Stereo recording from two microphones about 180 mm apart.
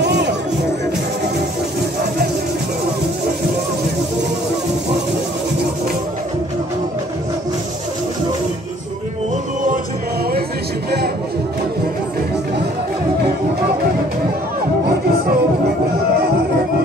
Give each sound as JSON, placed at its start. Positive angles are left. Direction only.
{"t": 0.0, "sound": "music", "side_deg": -70}
{"t": 14.9, "sound": "music", "side_deg": -60}